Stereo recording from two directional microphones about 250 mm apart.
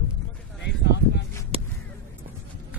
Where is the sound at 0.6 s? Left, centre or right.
Left.